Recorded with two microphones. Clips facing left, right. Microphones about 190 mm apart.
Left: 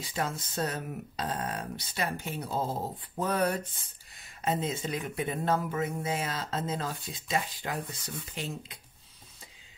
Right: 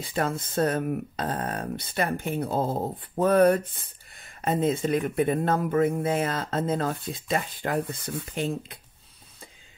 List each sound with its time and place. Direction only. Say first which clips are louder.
0.0 s speech: right 6 dB; 55° right (ahead or behind)